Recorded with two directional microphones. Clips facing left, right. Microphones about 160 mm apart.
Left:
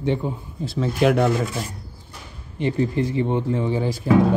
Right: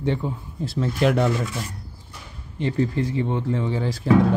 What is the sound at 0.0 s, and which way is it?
Speech, 15° left (ahead or behind).